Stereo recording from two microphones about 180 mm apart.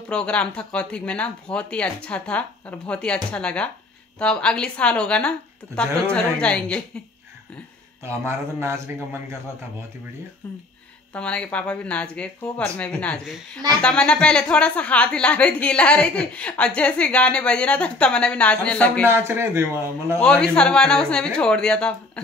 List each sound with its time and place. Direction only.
0.1 s speech: 5° left (ahead or behind)
8.5 s a man's voice: 15° right (ahead or behind)
11.1 s a woman's voice: 5° left (ahead or behind)
19.0 s a man's voice: 15° right (ahead or behind)
20.2 s speech: 5° left (ahead or behind)